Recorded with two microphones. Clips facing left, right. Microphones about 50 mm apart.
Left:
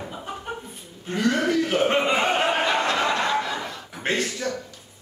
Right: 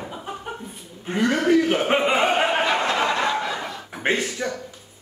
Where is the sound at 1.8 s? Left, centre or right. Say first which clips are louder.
Right 1 dB; centre.